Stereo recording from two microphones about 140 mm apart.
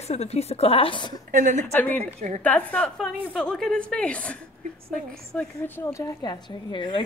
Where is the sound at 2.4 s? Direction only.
10° left (ahead or behind).